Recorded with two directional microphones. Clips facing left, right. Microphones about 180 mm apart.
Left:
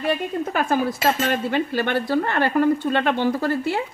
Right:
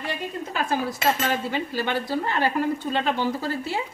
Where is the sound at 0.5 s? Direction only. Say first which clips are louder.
Left 4 dB; 55° left (ahead or behind).